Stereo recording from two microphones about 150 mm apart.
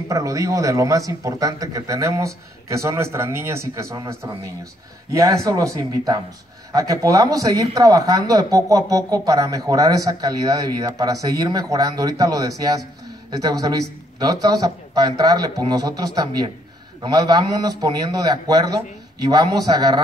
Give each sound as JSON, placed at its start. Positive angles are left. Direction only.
{"t": 0.1, "sound": "speech", "side_deg": -20}